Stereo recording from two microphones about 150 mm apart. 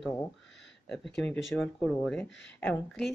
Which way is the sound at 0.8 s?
5° left (ahead or behind).